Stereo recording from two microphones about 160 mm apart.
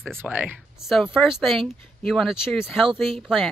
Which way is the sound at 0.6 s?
Centre (ahead or behind).